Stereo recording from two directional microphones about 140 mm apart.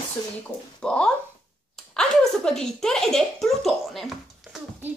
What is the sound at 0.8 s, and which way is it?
Speech, 5° left (ahead or behind).